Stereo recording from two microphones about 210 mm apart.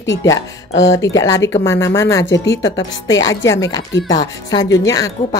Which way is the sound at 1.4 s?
10° left (ahead or behind).